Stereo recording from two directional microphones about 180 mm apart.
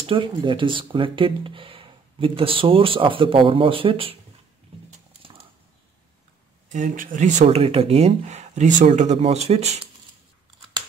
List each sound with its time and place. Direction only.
0.0 s speech: 30° right (ahead or behind)
6.7 s speech: 45° right (ahead or behind)